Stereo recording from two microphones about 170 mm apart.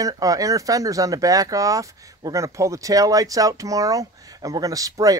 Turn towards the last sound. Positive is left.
turn(degrees=-20)  # may be behind; listen again after turning